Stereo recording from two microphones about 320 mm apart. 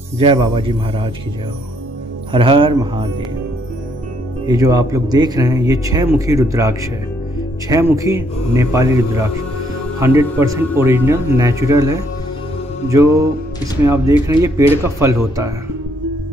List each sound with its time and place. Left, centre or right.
0.2 s speech: centre
2.3 s speech: centre
4.5 s speech: centre